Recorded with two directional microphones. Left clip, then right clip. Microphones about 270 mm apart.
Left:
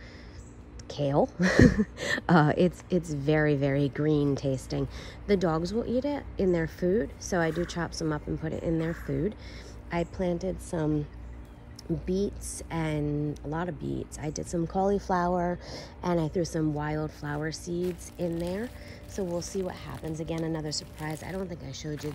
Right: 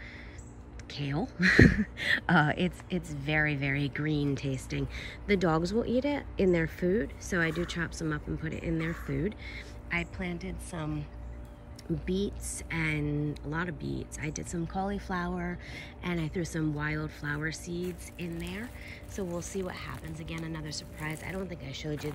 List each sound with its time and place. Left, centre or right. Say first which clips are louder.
0.8 s speech: left 10 dB; centre
12.1 s speech: left 3 dB; centre
15.3 s speech: left 9 dB; right
16.2 s speech: left 4 dB; centre